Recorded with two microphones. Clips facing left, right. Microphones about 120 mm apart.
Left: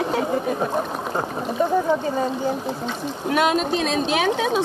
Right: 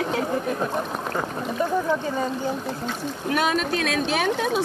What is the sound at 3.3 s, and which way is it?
Speech, 5° left (ahead or behind).